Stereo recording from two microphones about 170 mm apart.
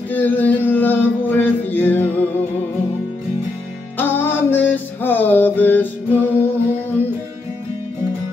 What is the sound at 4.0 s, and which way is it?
Music, 10° left (ahead or behind).